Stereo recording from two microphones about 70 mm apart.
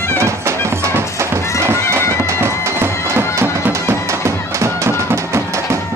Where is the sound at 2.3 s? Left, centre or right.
Right.